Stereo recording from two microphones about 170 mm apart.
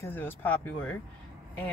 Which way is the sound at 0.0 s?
10° left (ahead or behind).